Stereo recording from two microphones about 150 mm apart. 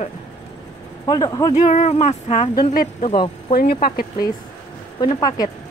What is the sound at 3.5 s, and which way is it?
Speech, 90° left.